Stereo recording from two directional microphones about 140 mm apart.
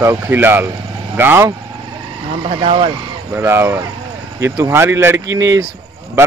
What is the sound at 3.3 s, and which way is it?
A man's voice, 15° right (ahead or behind).